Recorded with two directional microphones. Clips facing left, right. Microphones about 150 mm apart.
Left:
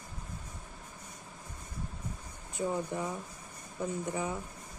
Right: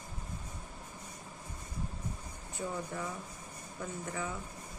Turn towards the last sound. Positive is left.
turn(degrees=20)  # may be behind; listen again after turning